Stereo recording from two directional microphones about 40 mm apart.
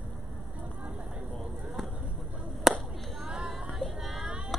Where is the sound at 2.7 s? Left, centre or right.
Centre.